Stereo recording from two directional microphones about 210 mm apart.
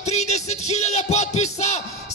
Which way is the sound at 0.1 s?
30° left (ahead or behind).